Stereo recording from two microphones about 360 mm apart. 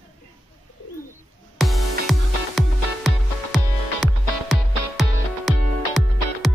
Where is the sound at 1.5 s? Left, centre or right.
Centre.